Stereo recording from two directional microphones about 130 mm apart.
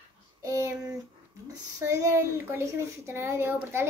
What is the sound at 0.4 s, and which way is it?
Child singing, 25° right (ahead or behind).